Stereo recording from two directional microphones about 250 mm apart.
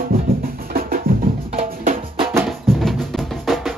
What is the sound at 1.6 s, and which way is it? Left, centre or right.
Music, right.